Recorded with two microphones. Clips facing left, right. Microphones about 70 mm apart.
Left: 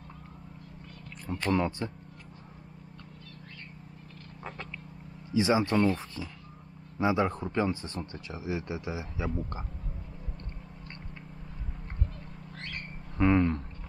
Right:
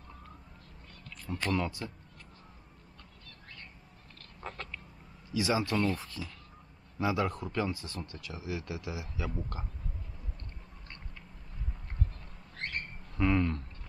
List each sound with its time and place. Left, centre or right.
1.2 s speech: left
4.4 s a sound: centre
5.3 s speech: left
13.2 s speech: left